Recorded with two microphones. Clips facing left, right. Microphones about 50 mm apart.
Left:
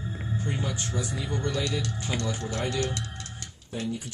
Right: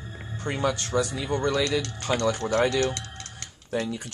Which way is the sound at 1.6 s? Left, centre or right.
Right.